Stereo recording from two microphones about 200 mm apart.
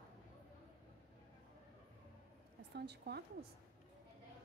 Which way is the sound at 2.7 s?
55° right (ahead or behind).